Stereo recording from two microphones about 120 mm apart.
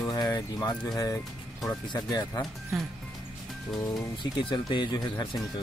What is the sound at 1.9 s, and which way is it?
Speech, 30° left (ahead or behind).